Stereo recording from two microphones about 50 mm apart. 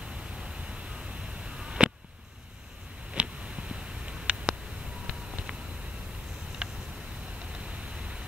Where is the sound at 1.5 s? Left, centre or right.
Centre.